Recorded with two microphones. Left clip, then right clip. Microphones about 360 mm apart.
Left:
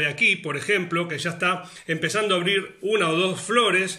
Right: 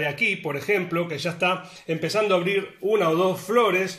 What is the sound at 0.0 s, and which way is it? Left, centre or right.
A man's voice, centre.